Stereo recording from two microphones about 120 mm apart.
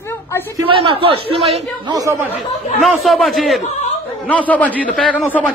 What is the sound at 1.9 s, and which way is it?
Speech, 30° right (ahead or behind).